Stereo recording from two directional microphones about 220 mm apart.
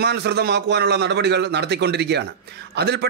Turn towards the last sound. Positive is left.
turn(degrees=-45)  # may be behind; listen again after turning